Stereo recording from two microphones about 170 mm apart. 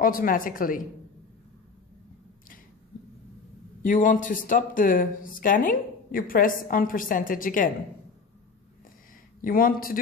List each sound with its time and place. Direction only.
0.0 s speech: 55° left (ahead or behind)
3.8 s speech: 50° left (ahead or behind)
9.4 s a man's voice: 55° left (ahead or behind)